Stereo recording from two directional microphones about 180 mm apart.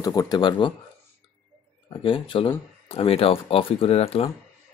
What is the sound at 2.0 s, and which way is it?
Speech, 30° left (ahead or behind).